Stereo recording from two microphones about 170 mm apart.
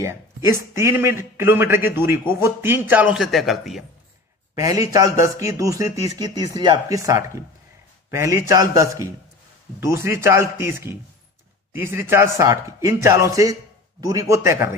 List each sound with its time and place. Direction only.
0.0 s a man's voice: 15° right (ahead or behind); by 3.8 s centre (ahead or behind)
4.6 s a man's voice: 20° right (ahead or behind)